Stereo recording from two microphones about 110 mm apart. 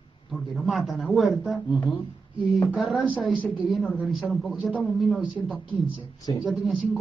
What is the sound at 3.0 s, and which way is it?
Speech, 15° right (ahead or behind).